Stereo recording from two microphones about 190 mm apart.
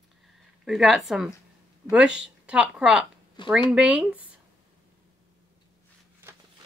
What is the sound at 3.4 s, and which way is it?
Speech, 25° left (ahead or behind).